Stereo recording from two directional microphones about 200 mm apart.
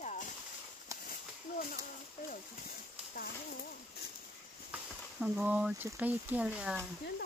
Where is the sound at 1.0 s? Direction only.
45° left (ahead or behind).